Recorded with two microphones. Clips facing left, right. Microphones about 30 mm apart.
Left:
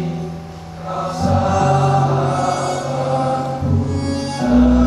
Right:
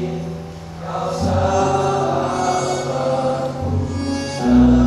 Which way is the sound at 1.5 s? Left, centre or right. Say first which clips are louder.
Left 1 dB; centre.